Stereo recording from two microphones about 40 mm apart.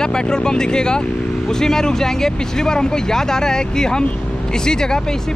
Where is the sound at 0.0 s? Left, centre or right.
Centre.